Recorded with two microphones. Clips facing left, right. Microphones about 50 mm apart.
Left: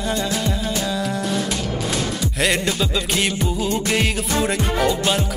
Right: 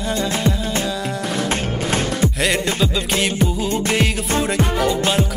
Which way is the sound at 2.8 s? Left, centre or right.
Centre.